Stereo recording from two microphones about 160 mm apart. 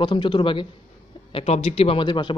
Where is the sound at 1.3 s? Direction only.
40° left (ahead or behind).